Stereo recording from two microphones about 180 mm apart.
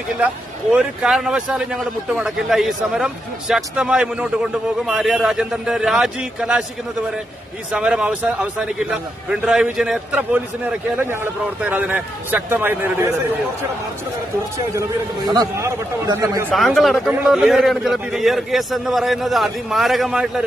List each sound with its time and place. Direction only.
0.2 s a man's voice: 5° right (ahead or behind)
7.7 s a man's voice: 5° right (ahead or behind)
11.6 s a man's voice: 10° right (ahead or behind)
14.8 s a man's voice: 20° right (ahead or behind)
16.4 s a man's voice: centre (ahead or behind)